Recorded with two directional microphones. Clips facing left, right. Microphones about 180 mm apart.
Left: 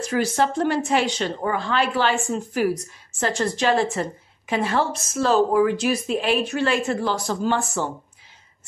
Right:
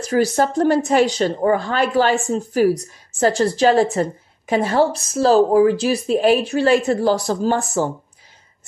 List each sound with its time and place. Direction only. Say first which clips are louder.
0.0 s a woman's voice: right 4 dB; 40° right (ahead or behind)